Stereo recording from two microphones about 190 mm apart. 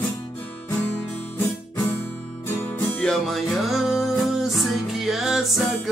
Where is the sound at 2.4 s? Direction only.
10° left (ahead or behind).